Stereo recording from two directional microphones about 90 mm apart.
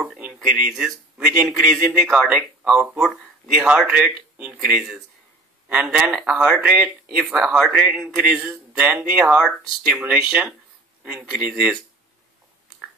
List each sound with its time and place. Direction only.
0.0 s a sound: 15° right (ahead or behind)
0.4 s speech: 5° right (ahead or behind)
8.2 s speech: 15° right (ahead or behind)